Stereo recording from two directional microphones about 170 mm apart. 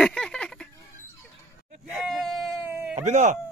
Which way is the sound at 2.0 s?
Centre (ahead or behind).